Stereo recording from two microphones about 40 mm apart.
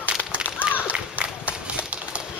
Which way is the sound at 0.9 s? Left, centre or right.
Right.